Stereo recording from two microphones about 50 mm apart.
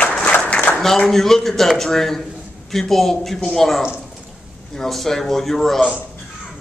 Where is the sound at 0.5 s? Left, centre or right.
Left.